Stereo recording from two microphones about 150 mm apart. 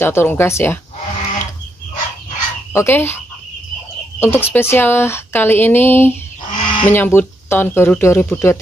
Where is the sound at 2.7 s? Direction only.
15° left (ahead or behind).